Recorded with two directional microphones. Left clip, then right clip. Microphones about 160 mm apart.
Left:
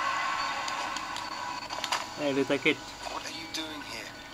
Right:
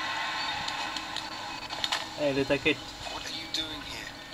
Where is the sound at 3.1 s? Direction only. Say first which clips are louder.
Right 2 dB; 40° left (ahead or behind).